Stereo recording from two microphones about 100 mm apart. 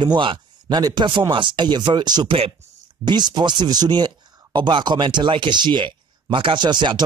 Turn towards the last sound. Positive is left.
turn(degrees=-50)  # may be behind; listen again after turning